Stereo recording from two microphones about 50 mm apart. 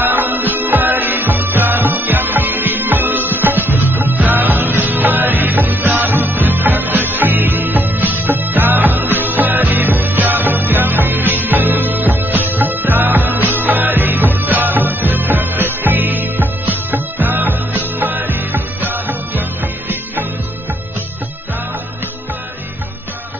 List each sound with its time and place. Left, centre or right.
0.0 s music: right